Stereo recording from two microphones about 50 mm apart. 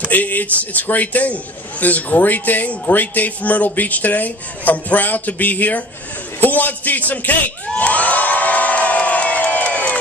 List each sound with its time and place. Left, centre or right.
0.1 s a man's voice: left
6.4 s crowd: left